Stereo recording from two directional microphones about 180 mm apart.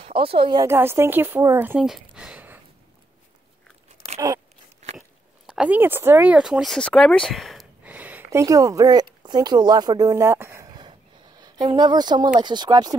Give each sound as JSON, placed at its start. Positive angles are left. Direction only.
{"t": 0.2, "sound": "speech", "side_deg": -30}
{"t": 0.7, "sound": "speech", "side_deg": -15}
{"t": 4.8, "sound": "biting", "side_deg": -40}
{"t": 5.5, "sound": "speech", "side_deg": -5}
{"t": 9.2, "sound": "a sound", "side_deg": -25}
{"t": 12.4, "sound": "speech", "side_deg": -25}